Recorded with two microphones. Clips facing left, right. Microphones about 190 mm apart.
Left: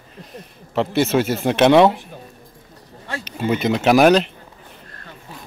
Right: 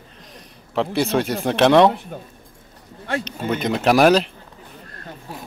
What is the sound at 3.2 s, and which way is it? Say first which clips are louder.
A man's voice: left 5 dB; 5° left (ahead or behind).